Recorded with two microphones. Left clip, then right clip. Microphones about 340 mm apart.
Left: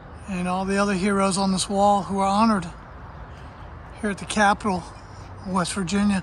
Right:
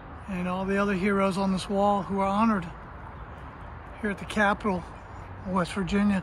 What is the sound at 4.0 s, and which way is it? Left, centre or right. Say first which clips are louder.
Speech: left 5 dB; centre.